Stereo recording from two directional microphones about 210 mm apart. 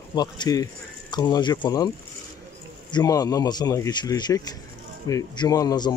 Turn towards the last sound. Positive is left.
turn(degrees=20)  # may be behind; listen again after turning